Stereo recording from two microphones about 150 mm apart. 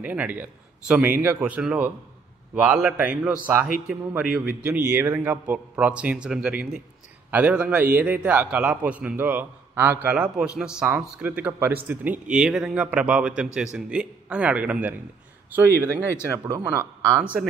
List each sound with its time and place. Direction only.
0.0 s a man's voice: 10° right (ahead or behind)
17.2 s a man's voice: 10° right (ahead or behind)